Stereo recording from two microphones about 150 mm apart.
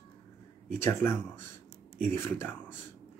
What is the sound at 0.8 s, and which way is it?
A man's voice, 15° left (ahead or behind).